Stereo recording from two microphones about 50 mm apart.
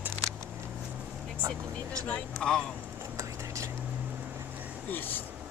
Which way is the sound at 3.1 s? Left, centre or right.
Right.